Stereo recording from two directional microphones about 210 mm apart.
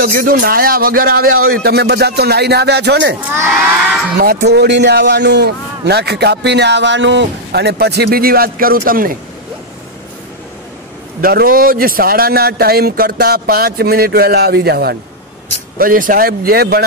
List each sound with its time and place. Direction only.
0.0 s a man's voice: 45° right (ahead or behind)
3.2 s speech: 10° right (ahead or behind)
4.2 s a man's voice: 50° right (ahead or behind)
11.1 s a man's voice: 45° right (ahead or behind)